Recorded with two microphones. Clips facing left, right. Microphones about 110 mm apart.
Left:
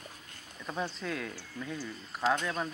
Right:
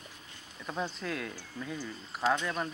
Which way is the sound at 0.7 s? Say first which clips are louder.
Even; centre (ahead or behind).